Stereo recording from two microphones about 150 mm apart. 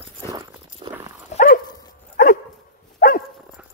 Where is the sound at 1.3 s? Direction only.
50° left (ahead or behind).